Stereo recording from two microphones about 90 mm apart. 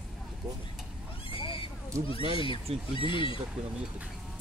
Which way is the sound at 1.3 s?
75° left (ahead or behind).